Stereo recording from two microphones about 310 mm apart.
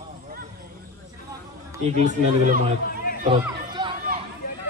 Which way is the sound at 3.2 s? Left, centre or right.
Centre.